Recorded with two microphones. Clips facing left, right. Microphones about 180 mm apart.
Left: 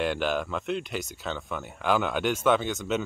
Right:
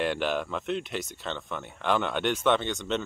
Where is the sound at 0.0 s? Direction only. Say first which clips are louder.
Left 1 dB; centre (ahead or behind).